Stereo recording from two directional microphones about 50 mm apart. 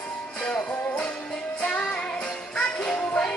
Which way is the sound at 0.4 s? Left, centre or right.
Left.